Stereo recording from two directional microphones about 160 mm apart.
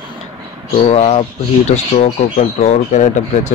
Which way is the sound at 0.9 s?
40° left (ahead or behind).